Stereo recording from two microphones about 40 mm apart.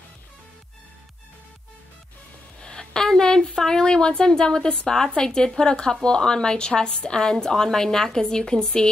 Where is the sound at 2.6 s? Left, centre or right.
Centre.